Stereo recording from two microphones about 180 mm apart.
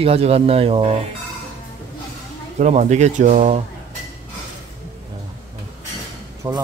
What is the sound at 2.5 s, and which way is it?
Speech, 40° right (ahead or behind).